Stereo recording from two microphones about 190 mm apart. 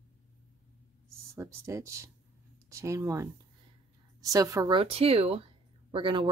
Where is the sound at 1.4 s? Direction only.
15° right (ahead or behind).